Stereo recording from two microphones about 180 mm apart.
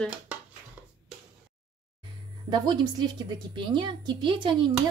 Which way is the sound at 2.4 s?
25° right (ahead or behind).